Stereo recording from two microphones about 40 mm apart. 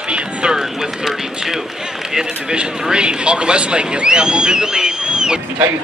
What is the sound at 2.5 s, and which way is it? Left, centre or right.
Speech, right.